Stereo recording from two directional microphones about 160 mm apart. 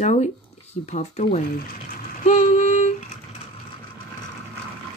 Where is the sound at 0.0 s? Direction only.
45° left (ahead or behind).